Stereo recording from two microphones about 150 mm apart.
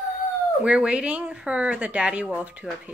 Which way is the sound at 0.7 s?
5° right (ahead or behind).